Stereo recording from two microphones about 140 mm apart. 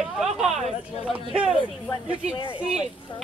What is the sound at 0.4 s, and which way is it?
Speech, 5° right (ahead or behind).